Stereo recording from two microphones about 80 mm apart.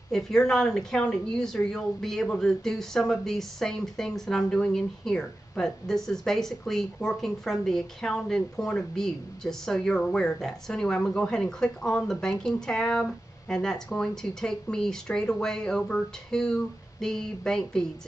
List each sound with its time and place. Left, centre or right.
0.1 s a woman's voice: centre